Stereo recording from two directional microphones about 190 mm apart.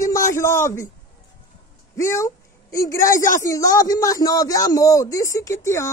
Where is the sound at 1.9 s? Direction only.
15° left (ahead or behind).